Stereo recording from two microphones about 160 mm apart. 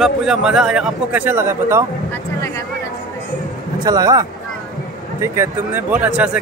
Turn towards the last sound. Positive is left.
turn(degrees=-5)  # may be behind; listen again after turning